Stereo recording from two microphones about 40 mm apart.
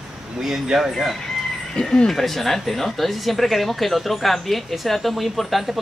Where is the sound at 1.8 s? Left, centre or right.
Left.